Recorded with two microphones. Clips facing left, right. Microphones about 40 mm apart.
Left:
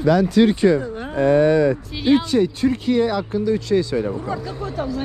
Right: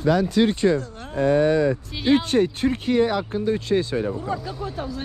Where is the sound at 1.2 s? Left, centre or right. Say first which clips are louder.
Left 3 dB; left.